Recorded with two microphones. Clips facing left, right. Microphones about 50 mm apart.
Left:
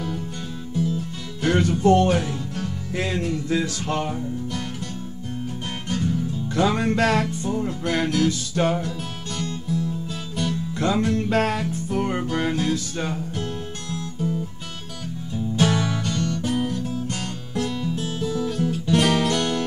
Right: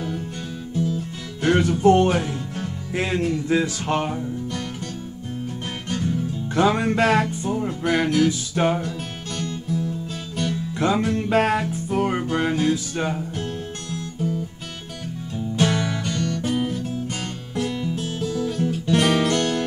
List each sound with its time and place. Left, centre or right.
1.4 s music: centre
4.1 s music: centre
5.9 s music: centre
6.5 s music: centre
15.3 s music: centre
18.0 s music: centre
18.9 s guitar: centre
19.2 s music: centre